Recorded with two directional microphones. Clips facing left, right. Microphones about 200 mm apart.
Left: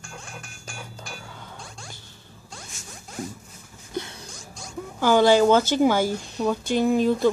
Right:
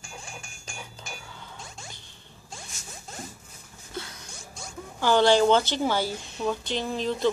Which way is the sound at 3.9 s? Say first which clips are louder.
Left 6 dB; 25° left (ahead or behind).